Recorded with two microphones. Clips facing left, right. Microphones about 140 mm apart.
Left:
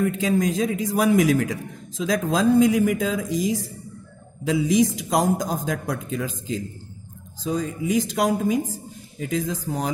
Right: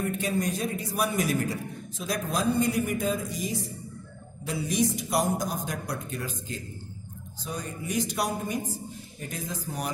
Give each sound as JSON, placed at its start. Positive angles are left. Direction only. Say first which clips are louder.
{"t": 0.0, "sound": "a man's voice", "louder": "left 7 dB", "side_deg": 90}